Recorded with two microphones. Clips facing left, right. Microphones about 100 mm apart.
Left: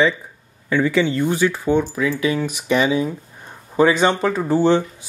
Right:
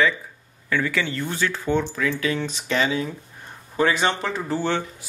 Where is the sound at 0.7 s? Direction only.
20° left (ahead or behind).